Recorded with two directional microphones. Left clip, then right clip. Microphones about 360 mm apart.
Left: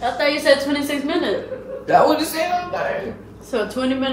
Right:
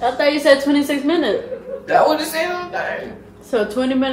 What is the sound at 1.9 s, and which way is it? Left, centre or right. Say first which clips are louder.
Speech: even; centre.